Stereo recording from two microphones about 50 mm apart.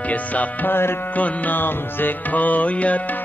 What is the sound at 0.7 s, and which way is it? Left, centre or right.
Music, left.